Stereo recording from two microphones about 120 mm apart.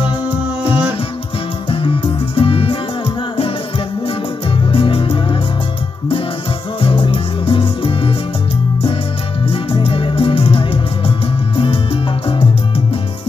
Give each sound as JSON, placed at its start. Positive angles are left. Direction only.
{"t": 1.7, "sound": "music", "side_deg": 50}
{"t": 4.7, "sound": "music", "side_deg": 50}
{"t": 6.8, "sound": "music", "side_deg": 50}
{"t": 9.5, "sound": "music", "side_deg": 50}